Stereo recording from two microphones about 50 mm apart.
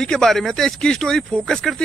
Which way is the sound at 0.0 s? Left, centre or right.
Centre.